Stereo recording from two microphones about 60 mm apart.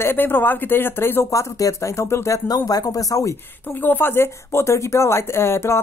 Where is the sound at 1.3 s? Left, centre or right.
Left.